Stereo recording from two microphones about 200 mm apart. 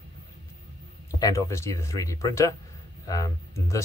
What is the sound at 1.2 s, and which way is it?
Speech, 15° left (ahead or behind).